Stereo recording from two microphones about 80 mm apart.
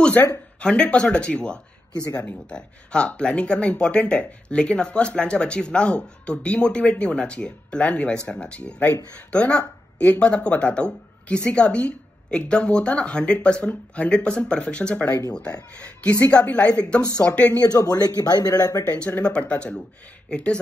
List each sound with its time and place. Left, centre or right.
0.6 s speech: centre
2.0 s speech: left
2.2 s speech: centre
17.5 s speech: left
18.9 s speech: centre